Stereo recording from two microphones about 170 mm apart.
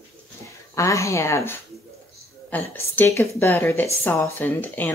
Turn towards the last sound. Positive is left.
turn(degrees=10)  # may be behind; listen again after turning